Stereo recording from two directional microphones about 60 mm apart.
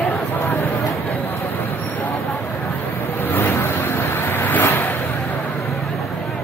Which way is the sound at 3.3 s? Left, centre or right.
Left.